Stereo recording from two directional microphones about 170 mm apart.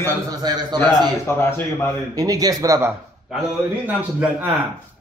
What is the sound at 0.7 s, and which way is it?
A man's voice, 15° left (ahead or behind).